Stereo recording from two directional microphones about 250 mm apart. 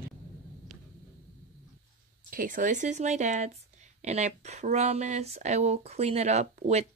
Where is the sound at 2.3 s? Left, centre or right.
Right.